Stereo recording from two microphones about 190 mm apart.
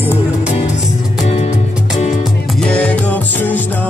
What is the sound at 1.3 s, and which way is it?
Music, 35° left (ahead or behind).